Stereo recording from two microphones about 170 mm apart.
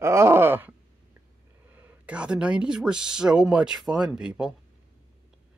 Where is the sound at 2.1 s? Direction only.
5° right (ahead or behind).